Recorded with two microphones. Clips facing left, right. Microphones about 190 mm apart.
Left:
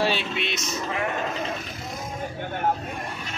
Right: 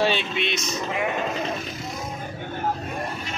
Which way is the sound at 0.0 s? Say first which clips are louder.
Right 2 dB; 5° left (ahead or behind).